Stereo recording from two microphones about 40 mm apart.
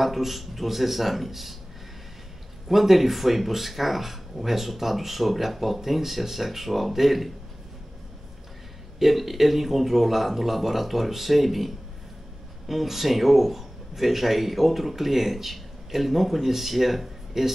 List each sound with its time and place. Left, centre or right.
0.0 s speech: centre
2.7 s speech: centre
9.0 s speech: centre